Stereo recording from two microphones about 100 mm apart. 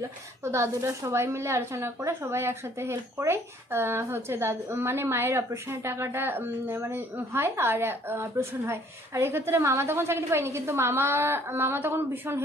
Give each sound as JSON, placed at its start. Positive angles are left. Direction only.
{"t": 0.4, "sound": "speech", "side_deg": -30}